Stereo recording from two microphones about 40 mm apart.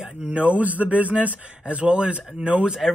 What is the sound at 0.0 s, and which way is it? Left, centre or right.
A man's voice, right.